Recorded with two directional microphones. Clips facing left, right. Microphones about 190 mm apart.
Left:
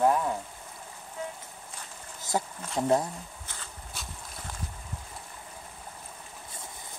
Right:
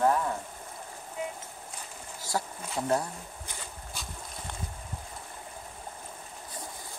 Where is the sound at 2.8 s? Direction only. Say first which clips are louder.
Left 3 dB; 15° left (ahead or behind).